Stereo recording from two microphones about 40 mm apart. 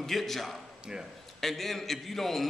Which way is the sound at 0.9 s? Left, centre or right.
Centre.